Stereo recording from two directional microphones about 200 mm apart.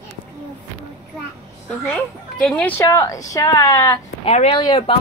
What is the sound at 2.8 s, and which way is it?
A woman's voice, 15° left (ahead or behind).